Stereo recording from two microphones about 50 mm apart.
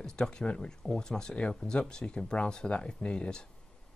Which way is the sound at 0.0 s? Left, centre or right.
Centre.